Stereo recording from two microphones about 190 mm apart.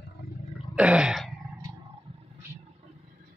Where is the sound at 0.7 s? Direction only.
5° right (ahead or behind).